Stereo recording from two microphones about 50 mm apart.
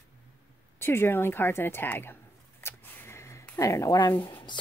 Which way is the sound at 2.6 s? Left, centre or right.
Left.